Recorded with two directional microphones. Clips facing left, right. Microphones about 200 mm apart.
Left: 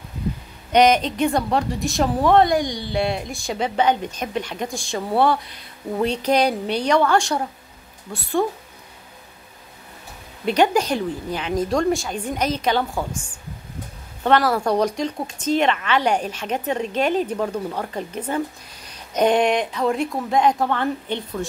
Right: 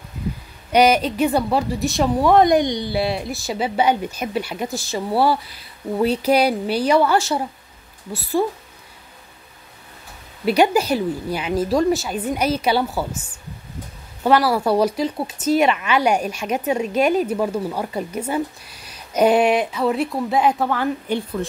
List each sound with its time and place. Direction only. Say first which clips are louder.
0.7 s a woman's voice: even; 10° right (ahead or behind)
2.3 s speech: right 3 dB; 20° right (ahead or behind)
2.9 s a woman's voice: right 1 dB; 5° right (ahead or behind)
10.4 s speech: right 2 dB; 10° right (ahead or behind)
14.2 s speech: right 1 dB; 5° right (ahead or behind)